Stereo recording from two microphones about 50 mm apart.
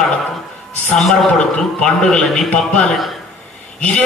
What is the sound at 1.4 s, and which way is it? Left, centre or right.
A man's voice, centre.